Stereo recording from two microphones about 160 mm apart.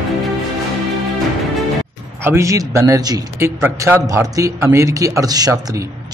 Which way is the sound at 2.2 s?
15° right (ahead or behind).